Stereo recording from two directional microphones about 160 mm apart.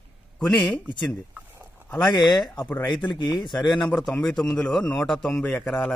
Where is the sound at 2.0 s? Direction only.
25° left (ahead or behind).